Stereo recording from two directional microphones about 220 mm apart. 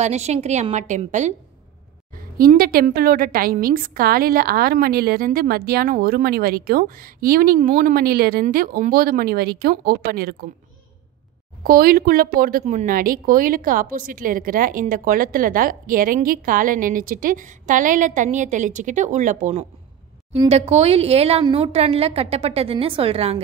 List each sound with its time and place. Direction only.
0.0 s a woman's voice: 30° right (ahead or behind)
2.3 s a woman's voice: 40° right (ahead or behind)
11.6 s a woman's voice: 40° right (ahead or behind); by 23.4 s 25° right (ahead or behind)